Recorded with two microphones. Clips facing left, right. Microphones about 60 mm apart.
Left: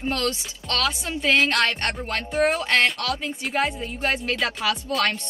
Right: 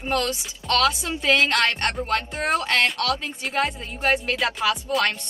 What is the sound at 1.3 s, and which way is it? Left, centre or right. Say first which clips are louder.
Speech: even; centre.